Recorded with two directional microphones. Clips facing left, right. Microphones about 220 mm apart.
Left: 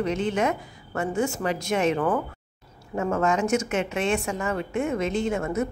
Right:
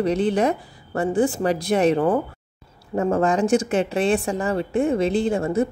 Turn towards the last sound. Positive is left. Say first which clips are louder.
# right 5 dB
turn(degrees=-30)  # may be behind; listen again after turning